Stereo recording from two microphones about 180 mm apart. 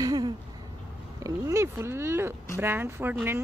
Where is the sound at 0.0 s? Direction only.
20° right (ahead or behind).